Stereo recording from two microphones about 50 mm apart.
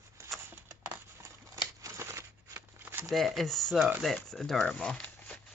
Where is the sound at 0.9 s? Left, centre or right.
Right.